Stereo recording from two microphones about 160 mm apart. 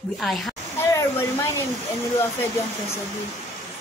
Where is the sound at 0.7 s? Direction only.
20° left (ahead or behind).